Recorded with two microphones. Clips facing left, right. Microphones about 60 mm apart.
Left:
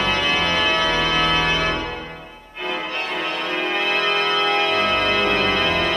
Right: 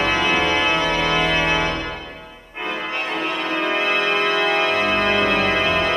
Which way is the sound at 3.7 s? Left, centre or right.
Right.